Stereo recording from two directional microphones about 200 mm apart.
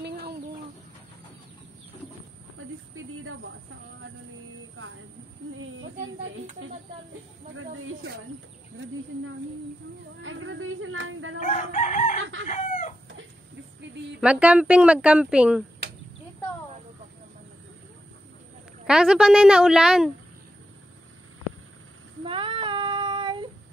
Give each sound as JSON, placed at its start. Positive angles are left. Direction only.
{"t": 5.6, "sound": "a sound", "side_deg": -80}
{"t": 7.5, "sound": "speech", "side_deg": -90}
{"t": 10.2, "sound": "a sound", "side_deg": -80}
{"t": 11.5, "sound": "chicken", "side_deg": 35}
{"t": 14.2, "sound": "speech", "side_deg": -5}
{"t": 18.9, "sound": "speech", "side_deg": -5}
{"t": 22.2, "sound": "child singing", "side_deg": -25}